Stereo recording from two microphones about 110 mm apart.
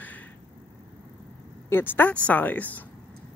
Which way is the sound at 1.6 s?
20° left (ahead or behind).